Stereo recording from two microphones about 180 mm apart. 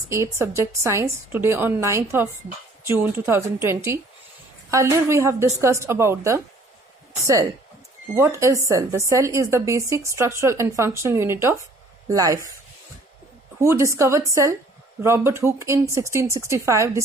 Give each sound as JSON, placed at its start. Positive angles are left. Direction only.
{"t": 0.1, "sound": "a woman's voice", "side_deg": -15}
{"t": 8.1, "sound": "a woman's voice", "side_deg": -15}
{"t": 13.6, "sound": "a woman's voice", "side_deg": -15}